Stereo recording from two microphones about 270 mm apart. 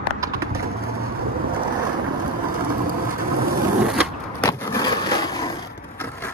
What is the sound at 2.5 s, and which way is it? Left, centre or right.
Vehicle, right.